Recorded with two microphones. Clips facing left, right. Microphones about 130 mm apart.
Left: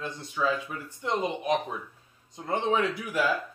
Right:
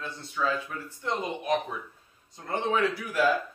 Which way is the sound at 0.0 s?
15° left (ahead or behind).